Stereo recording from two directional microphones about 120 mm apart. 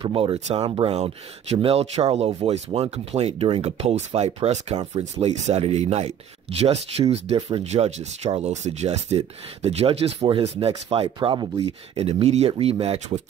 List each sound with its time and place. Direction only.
0.0 s speech: 50° right (ahead or behind)
11.1 s speech: 35° right (ahead or behind)
11.6 s speech: 55° right (ahead or behind)